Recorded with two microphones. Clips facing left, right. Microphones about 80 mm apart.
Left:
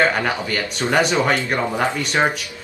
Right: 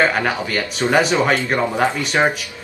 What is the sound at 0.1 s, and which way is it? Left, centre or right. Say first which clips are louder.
Speech: right 1 dB; centre.